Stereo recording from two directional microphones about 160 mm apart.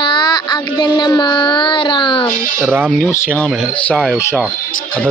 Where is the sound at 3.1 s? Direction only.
10° left (ahead or behind).